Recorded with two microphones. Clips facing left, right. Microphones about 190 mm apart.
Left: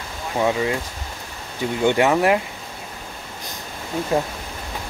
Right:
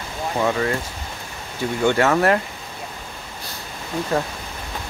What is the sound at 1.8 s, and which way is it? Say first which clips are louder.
Speech: even; 15° left (ahead or behind).